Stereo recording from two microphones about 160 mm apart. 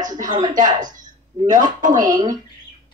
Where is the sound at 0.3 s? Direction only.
30° right (ahead or behind).